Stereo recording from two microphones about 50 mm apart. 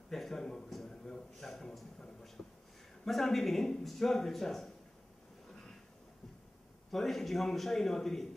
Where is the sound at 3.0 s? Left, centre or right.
Centre.